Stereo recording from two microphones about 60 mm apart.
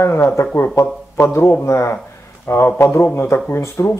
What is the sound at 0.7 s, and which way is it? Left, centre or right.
A man's voice, left.